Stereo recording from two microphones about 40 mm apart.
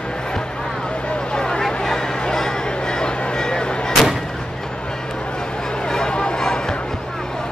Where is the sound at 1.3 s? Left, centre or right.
Centre.